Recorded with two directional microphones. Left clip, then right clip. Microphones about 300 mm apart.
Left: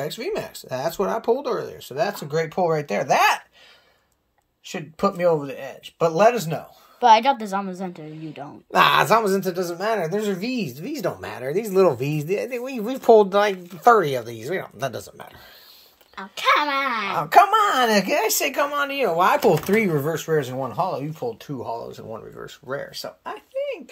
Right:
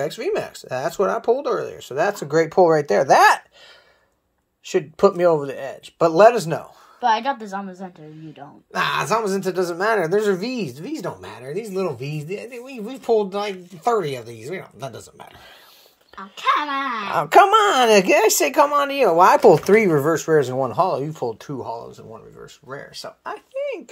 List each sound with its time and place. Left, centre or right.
0.0 s speech: centre
4.6 s speech: right
7.0 s a woman's voice: left
8.7 s speech: centre
16.2 s a woman's voice: left
17.1 s speech: right; by 23.4 s centre